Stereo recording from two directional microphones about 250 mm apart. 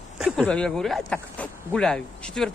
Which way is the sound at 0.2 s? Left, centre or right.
Centre.